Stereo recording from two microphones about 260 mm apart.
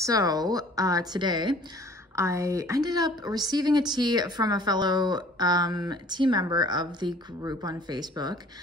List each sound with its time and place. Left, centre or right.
0.0 s a woman's voice: centre